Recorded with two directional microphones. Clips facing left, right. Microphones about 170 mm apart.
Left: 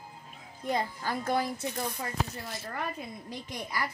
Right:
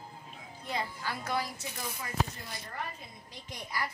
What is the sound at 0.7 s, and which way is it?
Speech, 50° left (ahead or behind).